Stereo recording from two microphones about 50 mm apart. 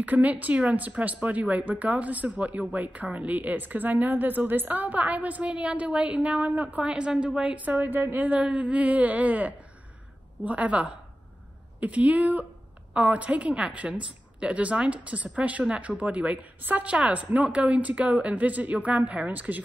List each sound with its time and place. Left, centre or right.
0.0 s a woman's voice: right
6.8 s a woman's voice: centre
7.5 s a woman's voice: right